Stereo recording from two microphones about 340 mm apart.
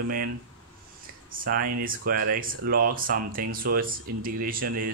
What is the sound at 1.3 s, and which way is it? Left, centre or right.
Speech, right.